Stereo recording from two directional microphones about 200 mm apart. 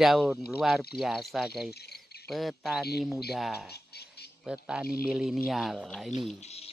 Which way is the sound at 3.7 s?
55° left (ahead or behind).